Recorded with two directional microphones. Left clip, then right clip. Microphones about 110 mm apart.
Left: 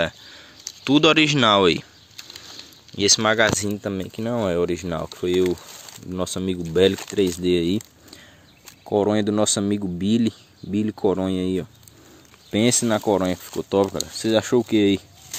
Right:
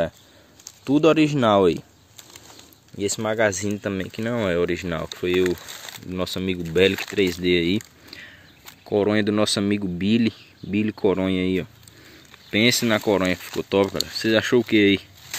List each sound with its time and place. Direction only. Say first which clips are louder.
0.8 s speech: left 1 dB; 5° right (ahead or behind)
3.1 s speech: left 4 dB; 15° left (ahead or behind)
3.6 s speech: even; centre (ahead or behind)
7.4 s a sound: even; 15° left (ahead or behind)
8.8 s speech: even; 10° left (ahead or behind)
12.4 s a sound: right 2 dB; 25° left (ahead or behind)
12.8 s speech: even; 5° left (ahead or behind)